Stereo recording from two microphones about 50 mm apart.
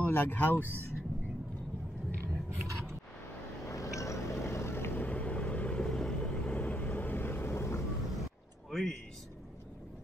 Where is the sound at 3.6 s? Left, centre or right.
Left.